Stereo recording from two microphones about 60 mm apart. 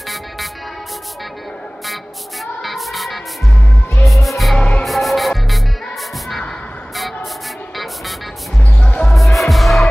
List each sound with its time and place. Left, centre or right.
2.4 s music: centre
4.6 s music: centre
4.8 s music: centre
8.8 s music: centre
9.1 s music: centre